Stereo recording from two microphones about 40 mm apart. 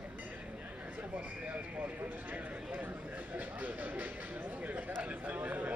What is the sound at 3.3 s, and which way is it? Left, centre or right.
Speech, right.